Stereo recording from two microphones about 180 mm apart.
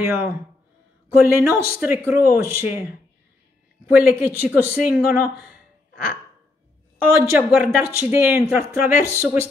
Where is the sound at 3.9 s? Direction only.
10° right (ahead or behind).